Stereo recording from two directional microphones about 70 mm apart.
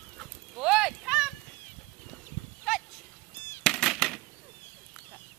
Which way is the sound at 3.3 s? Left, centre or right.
Left.